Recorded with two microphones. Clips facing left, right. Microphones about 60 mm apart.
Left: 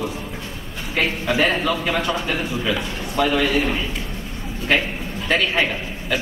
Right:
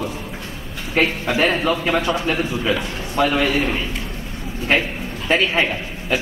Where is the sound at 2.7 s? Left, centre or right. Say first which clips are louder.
Right 2 dB; right.